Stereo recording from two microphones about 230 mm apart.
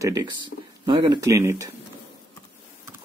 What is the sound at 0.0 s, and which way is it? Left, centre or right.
Speech, centre.